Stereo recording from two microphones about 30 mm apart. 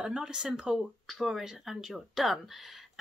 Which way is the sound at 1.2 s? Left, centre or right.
Centre.